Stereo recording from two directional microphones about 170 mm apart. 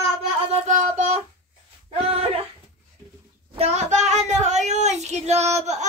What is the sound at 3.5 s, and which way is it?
Child singing, 40° right (ahead or behind).